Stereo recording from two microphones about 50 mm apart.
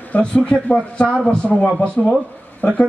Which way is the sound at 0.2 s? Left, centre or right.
Left.